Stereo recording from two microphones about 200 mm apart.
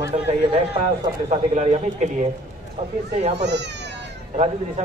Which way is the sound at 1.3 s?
35° right (ahead or behind).